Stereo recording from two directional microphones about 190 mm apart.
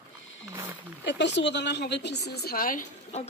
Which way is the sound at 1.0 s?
65° left (ahead or behind).